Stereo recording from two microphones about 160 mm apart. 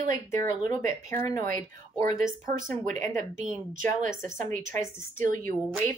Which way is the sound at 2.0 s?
55° right (ahead or behind).